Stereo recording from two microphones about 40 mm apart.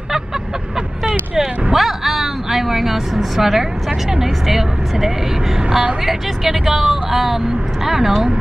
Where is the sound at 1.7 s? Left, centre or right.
Centre.